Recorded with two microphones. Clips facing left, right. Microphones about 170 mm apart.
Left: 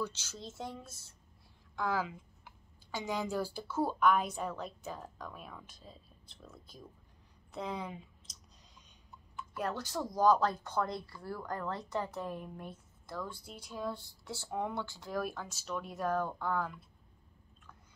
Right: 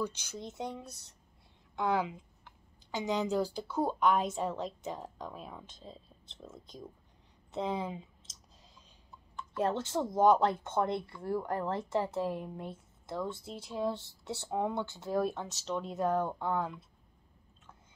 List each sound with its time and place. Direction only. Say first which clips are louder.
0.0 s a woman's voice: right 3 dB; 15° right (ahead or behind)
9.6 s a woman's voice: right 5 dB; 25° right (ahead or behind)